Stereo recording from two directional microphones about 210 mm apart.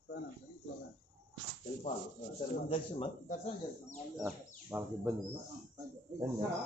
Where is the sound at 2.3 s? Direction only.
30° left (ahead or behind).